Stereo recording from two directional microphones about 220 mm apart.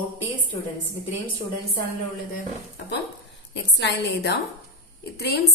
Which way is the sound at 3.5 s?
55° left (ahead or behind).